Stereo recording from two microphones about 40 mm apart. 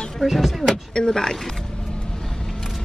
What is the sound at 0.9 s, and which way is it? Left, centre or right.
Speech, centre.